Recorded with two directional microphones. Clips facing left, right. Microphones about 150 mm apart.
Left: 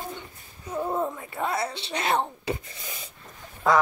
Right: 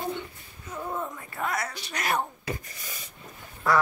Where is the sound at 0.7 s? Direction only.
30° left (ahead or behind).